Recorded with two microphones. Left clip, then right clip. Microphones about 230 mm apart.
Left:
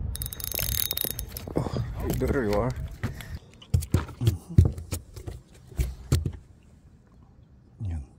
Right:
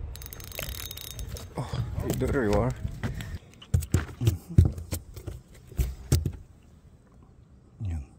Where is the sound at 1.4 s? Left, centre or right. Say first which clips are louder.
Left 7 dB; centre.